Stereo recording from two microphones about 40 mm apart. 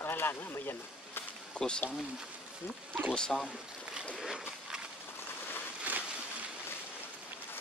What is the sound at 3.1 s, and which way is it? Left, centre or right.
Speech, centre.